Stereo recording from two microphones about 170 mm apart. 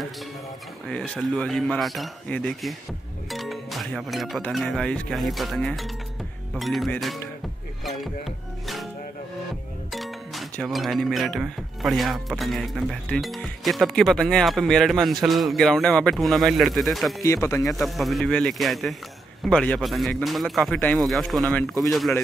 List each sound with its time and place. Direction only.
0.8 s speech: 5° left (ahead or behind)
9.9 s speech: centre (ahead or behind)
17.2 s speech: 15° left (ahead or behind)
17.6 s speech: centre (ahead or behind)